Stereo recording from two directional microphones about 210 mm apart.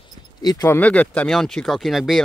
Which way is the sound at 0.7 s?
5° left (ahead or behind).